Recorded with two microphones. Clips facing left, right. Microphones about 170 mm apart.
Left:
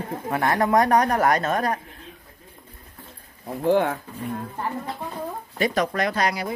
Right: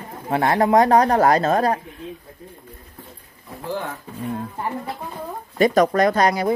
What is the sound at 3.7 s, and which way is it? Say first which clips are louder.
Speech: left 8 dB; 65° left (ahead or behind).